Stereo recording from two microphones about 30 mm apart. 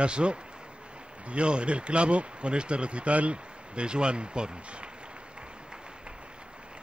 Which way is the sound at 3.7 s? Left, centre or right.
Right.